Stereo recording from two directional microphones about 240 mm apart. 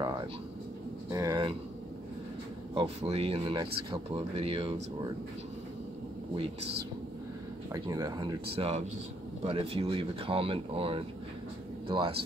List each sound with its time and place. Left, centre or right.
1.1 s speech: centre
2.7 s speech: right
7.7 s speech: centre